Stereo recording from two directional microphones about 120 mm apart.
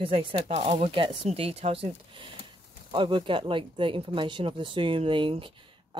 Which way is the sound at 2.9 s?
45° right (ahead or behind).